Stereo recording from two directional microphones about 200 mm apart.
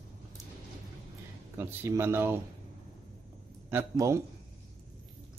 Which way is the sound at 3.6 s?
15° right (ahead or behind).